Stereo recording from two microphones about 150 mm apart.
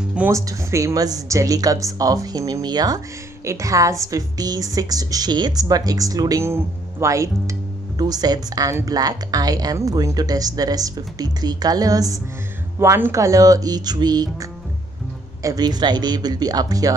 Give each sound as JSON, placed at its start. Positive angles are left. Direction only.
{"t": 0.3, "sound": "a woman's voice", "side_deg": -20}